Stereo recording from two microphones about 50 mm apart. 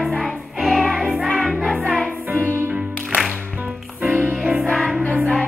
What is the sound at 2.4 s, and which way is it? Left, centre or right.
Music, right.